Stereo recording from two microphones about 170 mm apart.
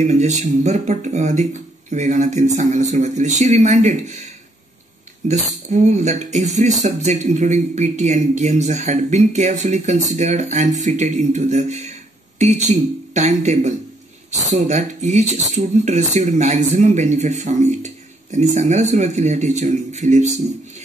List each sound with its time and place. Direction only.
0.0 s speech: 45° right (ahead or behind)
5.3 s speech: 45° right (ahead or behind)